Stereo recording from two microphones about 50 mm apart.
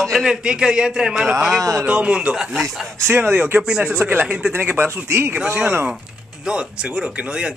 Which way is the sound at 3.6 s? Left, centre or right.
Centre.